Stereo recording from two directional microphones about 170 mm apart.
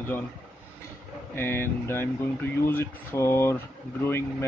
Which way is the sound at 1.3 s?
15° left (ahead or behind).